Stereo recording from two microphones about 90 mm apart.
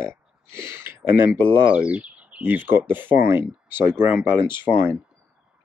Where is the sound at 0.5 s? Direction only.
25° right (ahead or behind).